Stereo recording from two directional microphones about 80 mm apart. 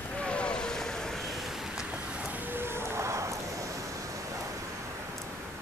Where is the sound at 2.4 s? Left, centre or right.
Right.